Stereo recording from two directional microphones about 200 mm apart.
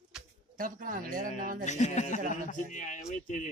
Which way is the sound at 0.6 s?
40° right (ahead or behind).